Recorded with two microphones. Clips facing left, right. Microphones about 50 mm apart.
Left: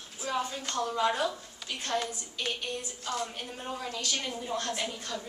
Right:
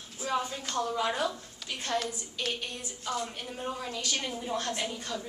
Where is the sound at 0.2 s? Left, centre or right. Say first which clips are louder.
Right 1 dB; centre.